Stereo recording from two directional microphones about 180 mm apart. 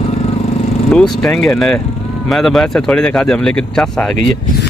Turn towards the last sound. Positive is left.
turn(degrees=5)  # may be behind; listen again after turning